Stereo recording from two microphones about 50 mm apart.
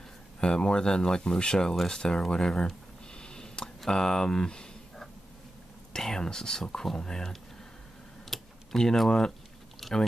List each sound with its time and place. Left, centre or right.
0.4 s speech: centre
3.2 s a sound: centre
5.9 s speech: centre
8.3 s computer keyboard: centre
9.8 s chewing: centre